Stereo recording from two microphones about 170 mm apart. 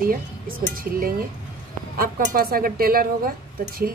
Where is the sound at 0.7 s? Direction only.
60° right (ahead or behind).